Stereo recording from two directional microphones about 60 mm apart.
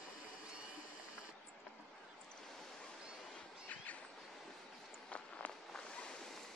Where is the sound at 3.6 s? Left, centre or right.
Left.